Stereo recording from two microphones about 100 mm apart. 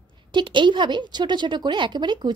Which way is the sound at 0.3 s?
50° right (ahead or behind).